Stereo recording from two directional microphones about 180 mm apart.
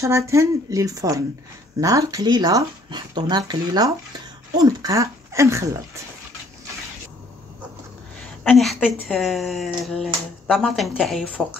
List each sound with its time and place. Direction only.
0.0 s speech: 15° right (ahead or behind)
8.5 s speech: centre (ahead or behind)